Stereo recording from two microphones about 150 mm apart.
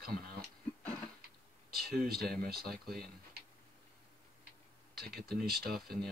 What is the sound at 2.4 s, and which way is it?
Speech, 85° right.